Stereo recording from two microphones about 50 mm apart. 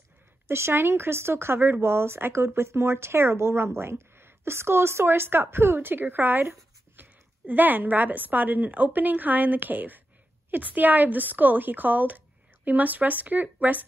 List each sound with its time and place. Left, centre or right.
0.5 s a woman's voice: right